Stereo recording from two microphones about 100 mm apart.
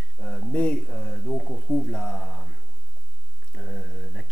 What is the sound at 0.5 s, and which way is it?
Speech, 15° left (ahead or behind).